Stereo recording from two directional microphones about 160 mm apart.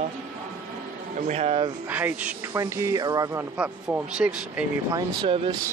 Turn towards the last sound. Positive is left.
turn(degrees=-30)  # may be behind; listen again after turning